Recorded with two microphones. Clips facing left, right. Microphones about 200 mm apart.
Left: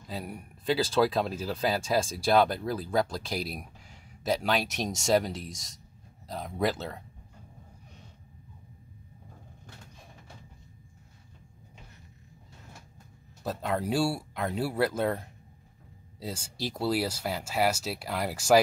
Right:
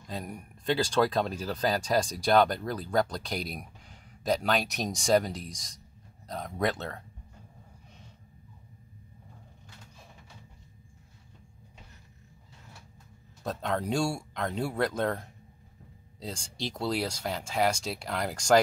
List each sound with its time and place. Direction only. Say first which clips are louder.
0.0 s speech: even; 5° left (ahead or behind)
13.4 s speech: left 1 dB; 5° left (ahead or behind)